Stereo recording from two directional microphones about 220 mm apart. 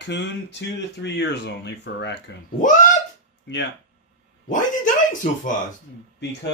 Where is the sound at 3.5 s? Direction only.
50° left (ahead or behind).